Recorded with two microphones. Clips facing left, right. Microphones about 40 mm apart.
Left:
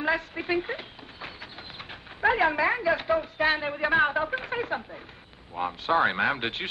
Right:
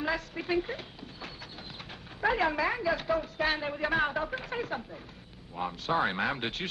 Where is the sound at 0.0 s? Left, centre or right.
Left.